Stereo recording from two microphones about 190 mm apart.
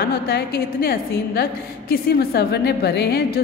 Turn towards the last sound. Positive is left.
turn(degrees=60)  # may be behind; listen again after turning